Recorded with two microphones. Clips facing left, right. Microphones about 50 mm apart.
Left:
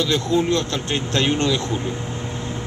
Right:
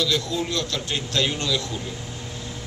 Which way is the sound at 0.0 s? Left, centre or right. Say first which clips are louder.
Left 5 dB; left.